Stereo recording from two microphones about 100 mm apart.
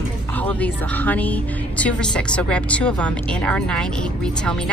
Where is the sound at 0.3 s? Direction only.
15° left (ahead or behind).